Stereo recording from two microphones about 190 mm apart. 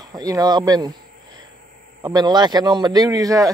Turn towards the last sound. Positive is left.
turn(degrees=-20)  # may be behind; listen again after turning